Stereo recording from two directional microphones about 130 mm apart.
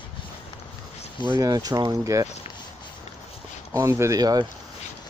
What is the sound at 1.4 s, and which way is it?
Speech, 30° right (ahead or behind).